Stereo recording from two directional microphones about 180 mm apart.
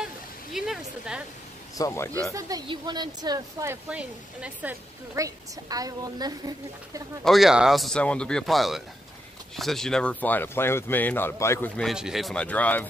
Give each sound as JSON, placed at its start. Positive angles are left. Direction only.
{"t": 0.0, "sound": "waterfall", "side_deg": 0}
{"t": 1.8, "sound": "speech", "side_deg": 15}
{"t": 2.3, "sound": "a woman's voice", "side_deg": -20}
{"t": 3.9, "sound": "speech", "side_deg": -5}
{"t": 7.2, "sound": "speech", "side_deg": 0}